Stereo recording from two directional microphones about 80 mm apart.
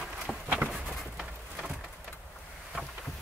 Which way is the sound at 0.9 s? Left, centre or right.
Centre.